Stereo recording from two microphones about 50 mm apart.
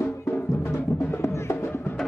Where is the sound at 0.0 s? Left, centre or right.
Left.